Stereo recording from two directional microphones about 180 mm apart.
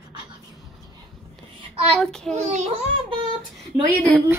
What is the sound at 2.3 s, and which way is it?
Speech, 40° right (ahead or behind).